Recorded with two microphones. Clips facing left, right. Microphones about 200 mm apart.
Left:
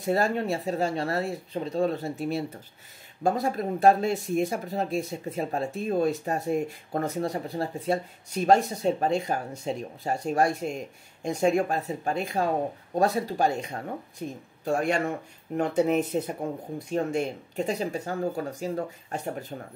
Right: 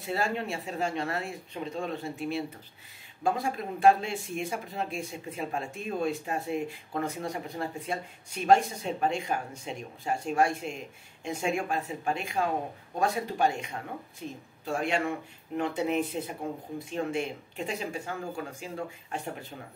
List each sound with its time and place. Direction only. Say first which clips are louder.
0.0 s speech: left 6 dB; 40° left (ahead or behind)
14.2 s speech: left 5 dB; 45° left (ahead or behind)